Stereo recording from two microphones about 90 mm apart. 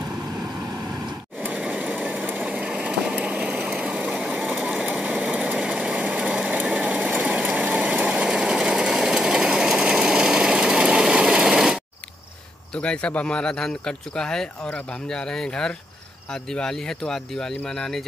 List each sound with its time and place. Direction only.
1.4 s a sound: 15° right (ahead or behind)
5.3 s engine: 10° right (ahead or behind)
12.7 s speech: 10° left (ahead or behind)